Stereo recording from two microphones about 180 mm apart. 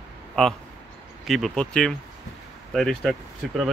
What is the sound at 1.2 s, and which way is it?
Speech, centre (ahead or behind).